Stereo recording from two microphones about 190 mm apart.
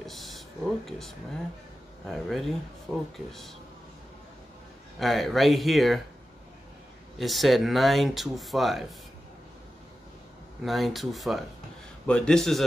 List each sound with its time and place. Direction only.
0.0 s a sound: centre (ahead or behind)
0.8 s speech: centre (ahead or behind)
4.9 s speech: centre (ahead or behind)
7.2 s speech: centre (ahead or behind)
10.6 s speech: centre (ahead or behind)